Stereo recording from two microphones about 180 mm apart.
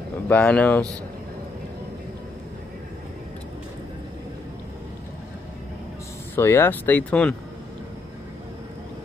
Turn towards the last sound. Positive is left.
turn(degrees=10)  # may be behind; listen again after turning